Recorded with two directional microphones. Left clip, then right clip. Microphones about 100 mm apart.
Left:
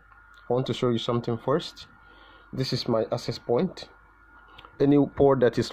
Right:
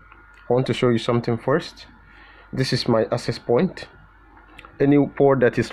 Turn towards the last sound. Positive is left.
turn(degrees=30)  # may be behind; listen again after turning